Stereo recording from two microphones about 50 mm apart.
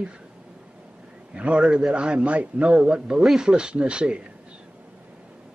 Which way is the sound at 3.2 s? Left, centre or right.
Centre.